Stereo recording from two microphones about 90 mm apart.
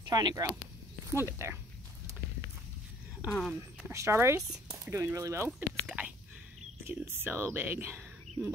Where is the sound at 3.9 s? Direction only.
30° right (ahead or behind).